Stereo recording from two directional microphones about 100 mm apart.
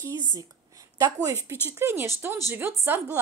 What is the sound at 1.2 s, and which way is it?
A woman's voice, 30° right (ahead or behind).